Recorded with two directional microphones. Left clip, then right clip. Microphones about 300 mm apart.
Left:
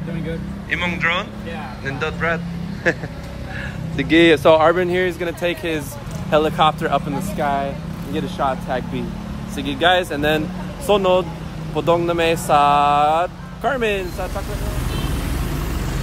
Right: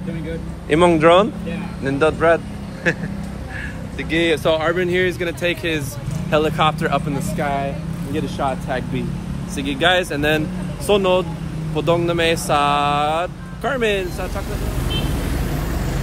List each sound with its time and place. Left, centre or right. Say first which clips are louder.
0.7 s speech: right 8 dB; centre
4.0 s speech: left 5 dB; left
4.8 s speech: right 1 dB; centre